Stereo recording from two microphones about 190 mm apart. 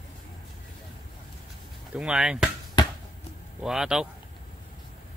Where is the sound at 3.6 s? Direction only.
5° right (ahead or behind).